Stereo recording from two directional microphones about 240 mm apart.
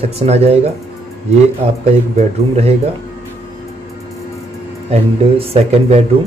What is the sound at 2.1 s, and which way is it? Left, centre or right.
Speech, right.